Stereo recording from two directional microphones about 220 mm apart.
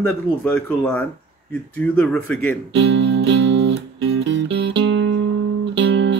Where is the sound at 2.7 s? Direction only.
55° right (ahead or behind).